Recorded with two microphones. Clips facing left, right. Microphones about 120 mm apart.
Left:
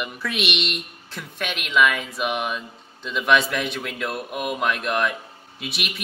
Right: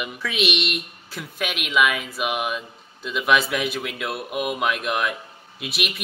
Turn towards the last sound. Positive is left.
turn(degrees=0)  # may be behind; listen again after turning